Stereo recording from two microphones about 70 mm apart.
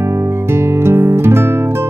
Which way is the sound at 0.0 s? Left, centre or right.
Right.